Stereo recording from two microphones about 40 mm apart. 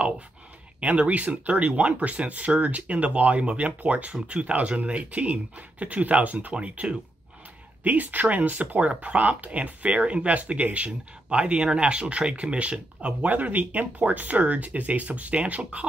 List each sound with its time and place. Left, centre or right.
0.7 s speech: right
7.8 s speech: right